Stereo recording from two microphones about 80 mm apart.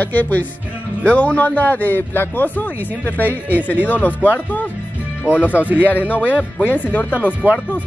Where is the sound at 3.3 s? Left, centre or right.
Right.